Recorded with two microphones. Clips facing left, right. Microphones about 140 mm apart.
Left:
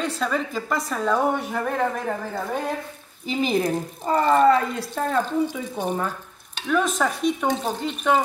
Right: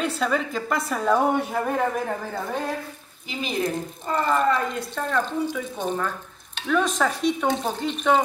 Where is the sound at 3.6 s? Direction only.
35° left (ahead or behind).